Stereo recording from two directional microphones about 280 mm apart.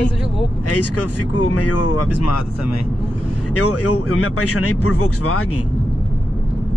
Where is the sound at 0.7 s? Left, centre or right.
Left.